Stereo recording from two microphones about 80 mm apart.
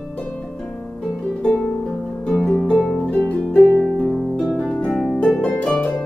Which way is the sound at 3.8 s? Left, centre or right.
Centre.